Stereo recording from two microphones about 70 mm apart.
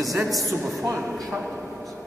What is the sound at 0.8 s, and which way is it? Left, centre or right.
Speech, right.